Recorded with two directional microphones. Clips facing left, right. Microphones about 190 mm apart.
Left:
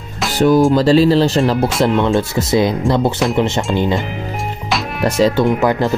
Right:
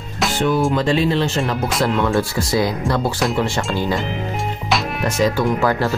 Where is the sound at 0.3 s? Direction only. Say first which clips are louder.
Left 7 dB; 40° left (ahead or behind).